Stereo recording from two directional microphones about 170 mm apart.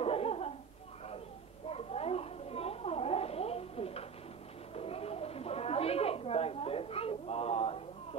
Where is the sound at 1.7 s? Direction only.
35° left (ahead or behind).